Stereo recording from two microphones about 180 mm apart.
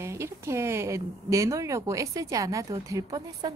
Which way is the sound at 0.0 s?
15° right (ahead or behind).